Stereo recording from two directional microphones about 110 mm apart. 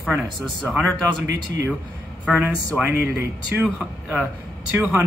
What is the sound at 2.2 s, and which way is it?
Speech, 10° right (ahead or behind).